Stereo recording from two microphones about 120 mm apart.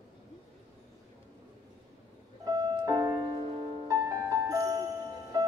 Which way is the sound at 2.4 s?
35° right (ahead or behind).